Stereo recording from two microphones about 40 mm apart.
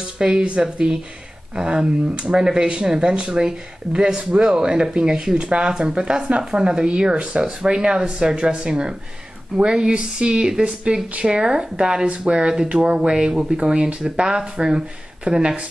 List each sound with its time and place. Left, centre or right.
0.2 s speech: right